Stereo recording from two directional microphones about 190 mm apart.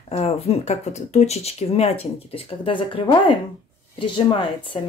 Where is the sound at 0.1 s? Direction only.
35° left (ahead or behind).